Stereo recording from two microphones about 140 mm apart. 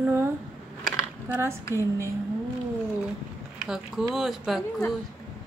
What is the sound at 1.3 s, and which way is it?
Speech, 20° right (ahead or behind).